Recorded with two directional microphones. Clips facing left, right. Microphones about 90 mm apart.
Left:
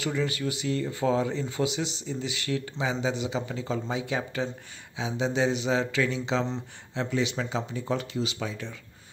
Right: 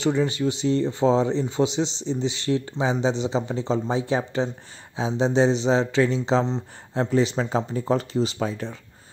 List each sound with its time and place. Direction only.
0.0 s speech: 25° right (ahead or behind)